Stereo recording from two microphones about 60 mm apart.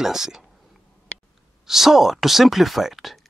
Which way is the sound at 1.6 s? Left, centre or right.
Centre.